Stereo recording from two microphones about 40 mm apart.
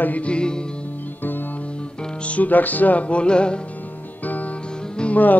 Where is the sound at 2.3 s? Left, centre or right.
Left.